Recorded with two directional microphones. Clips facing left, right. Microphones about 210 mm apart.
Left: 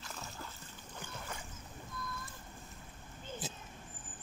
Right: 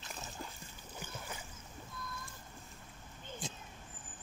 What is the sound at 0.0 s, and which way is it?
Boat, 20° right (ahead or behind).